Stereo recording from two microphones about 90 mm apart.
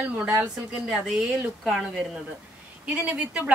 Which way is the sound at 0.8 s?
5° right (ahead or behind).